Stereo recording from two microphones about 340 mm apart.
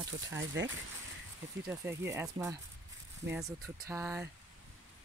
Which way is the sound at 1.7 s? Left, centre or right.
Centre.